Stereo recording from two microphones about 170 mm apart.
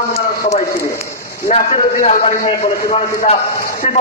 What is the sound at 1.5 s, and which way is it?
Speech, 40° left (ahead or behind).